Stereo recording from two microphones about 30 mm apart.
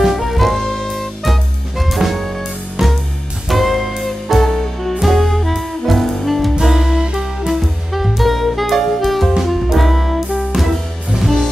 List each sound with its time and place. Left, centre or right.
0.0 s music: centre
2.8 s music: centre
3.4 s music: centre
4.5 s music: centre
6.6 s music: centre
7.4 s music: centre
8.2 s saxophone: centre
9.4 s music: centre